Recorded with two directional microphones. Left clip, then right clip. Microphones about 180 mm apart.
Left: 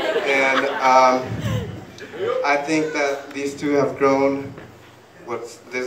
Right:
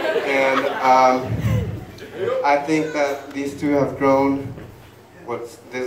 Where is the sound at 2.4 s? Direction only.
50° left (ahead or behind).